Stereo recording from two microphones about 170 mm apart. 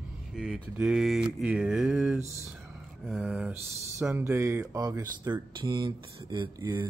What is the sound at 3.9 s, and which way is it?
A man's voice, 15° right (ahead or behind).